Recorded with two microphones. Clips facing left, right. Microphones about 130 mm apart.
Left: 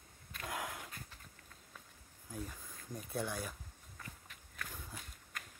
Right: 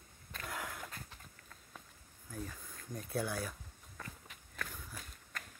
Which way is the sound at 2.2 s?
15° left (ahead or behind).